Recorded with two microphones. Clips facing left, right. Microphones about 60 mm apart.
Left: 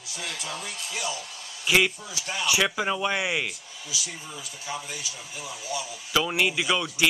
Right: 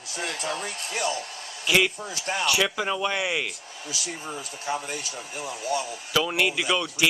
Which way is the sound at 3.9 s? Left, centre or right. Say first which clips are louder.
Right 3 dB; right.